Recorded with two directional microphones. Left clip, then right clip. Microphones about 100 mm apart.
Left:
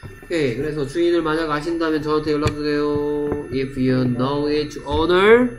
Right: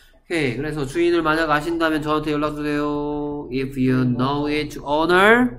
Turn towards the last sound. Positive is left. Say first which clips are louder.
# left 1 dB
turn(degrees=-10)  # may be behind; listen again after turning